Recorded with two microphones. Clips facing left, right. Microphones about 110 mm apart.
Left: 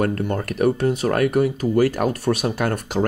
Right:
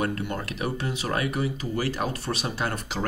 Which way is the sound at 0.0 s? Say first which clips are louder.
Left 6 dB; 45° left (ahead or behind).